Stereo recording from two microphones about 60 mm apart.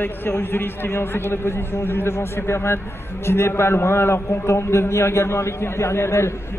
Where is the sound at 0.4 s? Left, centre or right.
Left.